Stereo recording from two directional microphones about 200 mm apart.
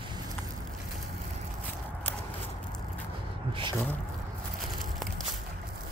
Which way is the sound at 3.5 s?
25° right (ahead or behind).